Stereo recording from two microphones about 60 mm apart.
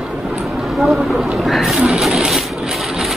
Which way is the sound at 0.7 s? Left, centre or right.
Centre.